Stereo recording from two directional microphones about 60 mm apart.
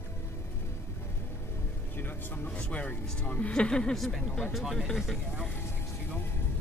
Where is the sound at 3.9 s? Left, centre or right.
Centre.